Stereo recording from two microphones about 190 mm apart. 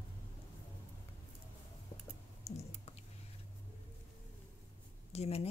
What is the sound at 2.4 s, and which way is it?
Typing, 35° left (ahead or behind).